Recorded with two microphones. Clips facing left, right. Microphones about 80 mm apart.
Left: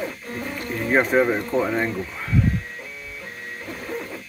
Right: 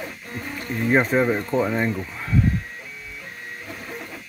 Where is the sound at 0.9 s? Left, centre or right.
Centre.